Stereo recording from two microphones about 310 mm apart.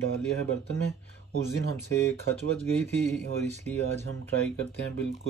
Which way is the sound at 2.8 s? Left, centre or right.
Right.